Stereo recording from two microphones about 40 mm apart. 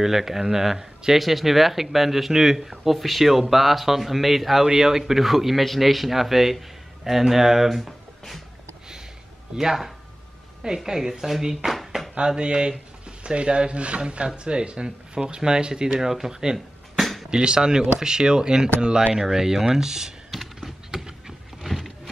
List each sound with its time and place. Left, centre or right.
0.0 s speech: centre
9.6 s speech: centre
12.2 s speech: right
16.5 s a sound: centre
17.3 s speech: right
20.2 s a sound: centre
21.6 s vehicle: centre